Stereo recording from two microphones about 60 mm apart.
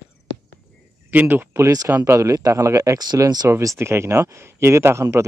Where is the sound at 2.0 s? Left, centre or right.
Right.